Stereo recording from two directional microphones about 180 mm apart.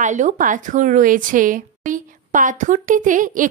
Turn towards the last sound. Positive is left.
turn(degrees=-45)  # may be behind; listen again after turning